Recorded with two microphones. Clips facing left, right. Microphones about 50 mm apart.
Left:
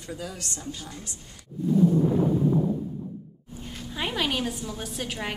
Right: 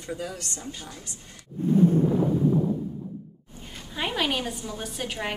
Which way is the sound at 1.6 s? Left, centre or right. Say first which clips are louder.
Right 1 dB; right.